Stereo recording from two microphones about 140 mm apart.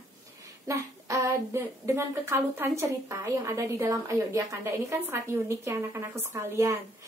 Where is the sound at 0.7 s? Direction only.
25° right (ahead or behind).